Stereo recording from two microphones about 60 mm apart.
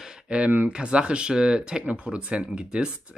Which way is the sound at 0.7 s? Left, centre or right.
Centre.